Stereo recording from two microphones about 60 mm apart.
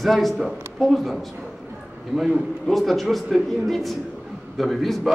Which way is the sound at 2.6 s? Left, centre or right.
Centre.